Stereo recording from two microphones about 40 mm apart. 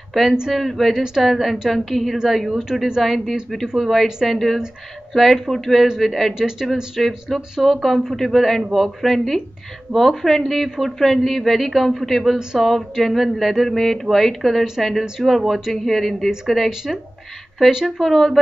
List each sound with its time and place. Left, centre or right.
0.1 s speech: centre
5.1 s speech: centre
6.3 s speech: centre
7.0 s speech: centre
17.8 s speech: centre